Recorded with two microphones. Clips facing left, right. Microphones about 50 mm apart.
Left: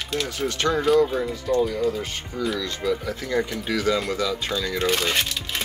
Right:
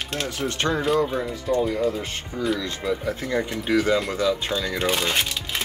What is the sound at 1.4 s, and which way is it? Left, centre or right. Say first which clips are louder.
Speech: even; right.